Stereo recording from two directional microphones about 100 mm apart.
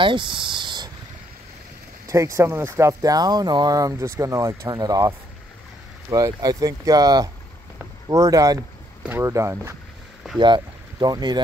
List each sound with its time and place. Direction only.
0.0 s a sound: 55° right (ahead or behind)
2.0 s speech: 30° right (ahead or behind)
10.4 s speech: 50° right (ahead or behind)